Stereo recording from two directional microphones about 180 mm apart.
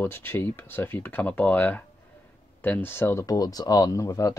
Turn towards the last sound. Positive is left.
turn(degrees=20)  # may be behind; listen again after turning